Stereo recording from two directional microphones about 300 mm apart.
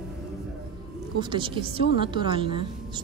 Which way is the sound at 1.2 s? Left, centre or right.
Centre.